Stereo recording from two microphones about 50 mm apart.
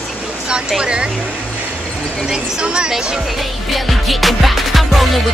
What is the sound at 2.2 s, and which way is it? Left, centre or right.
Speech, centre.